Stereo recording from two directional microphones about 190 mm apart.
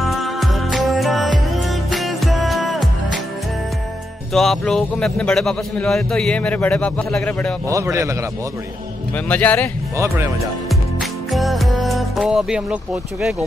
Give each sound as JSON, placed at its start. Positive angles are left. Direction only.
{"t": 0.0, "sound": "music", "side_deg": 0}
{"t": 4.3, "sound": "a man's voice", "side_deg": 0}
{"t": 7.6, "sound": "a man's voice", "side_deg": -15}
{"t": 9.1, "sound": "speech", "side_deg": 10}
{"t": 9.9, "sound": "a man's voice", "side_deg": -15}
{"t": 11.0, "sound": "music", "side_deg": 0}